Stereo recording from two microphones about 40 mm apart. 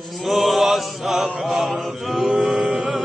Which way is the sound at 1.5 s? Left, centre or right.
Centre.